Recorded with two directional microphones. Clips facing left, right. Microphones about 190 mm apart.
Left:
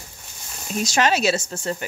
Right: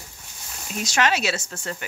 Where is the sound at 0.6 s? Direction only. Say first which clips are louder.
Left 3 dB; 35° left (ahead or behind).